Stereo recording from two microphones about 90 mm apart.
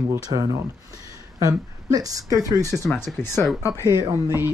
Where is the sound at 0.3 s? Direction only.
85° right.